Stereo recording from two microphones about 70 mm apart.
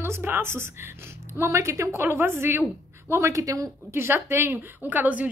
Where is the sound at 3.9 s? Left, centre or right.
Right.